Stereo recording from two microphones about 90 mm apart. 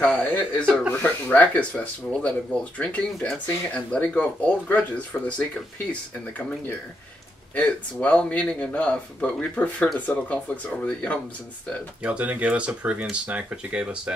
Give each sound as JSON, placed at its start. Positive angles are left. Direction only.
{"t": 0.0, "sound": "speech", "side_deg": 20}
{"t": 7.5, "sound": "speech", "side_deg": 15}
{"t": 12.0, "sound": "speech", "side_deg": -15}